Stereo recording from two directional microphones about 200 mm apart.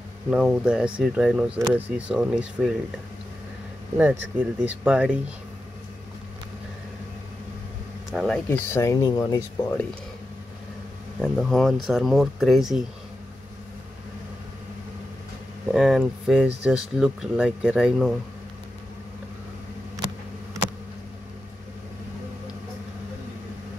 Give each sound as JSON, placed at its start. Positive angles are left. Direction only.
{"t": 0.3, "sound": "speech", "side_deg": -5}
{"t": 3.9, "sound": "speech", "side_deg": -10}
{"t": 8.1, "sound": "speech", "side_deg": 0}
{"t": 8.5, "sound": "speech", "side_deg": 15}
{"t": 11.1, "sound": "speech", "side_deg": 0}
{"t": 15.7, "sound": "speech", "side_deg": 0}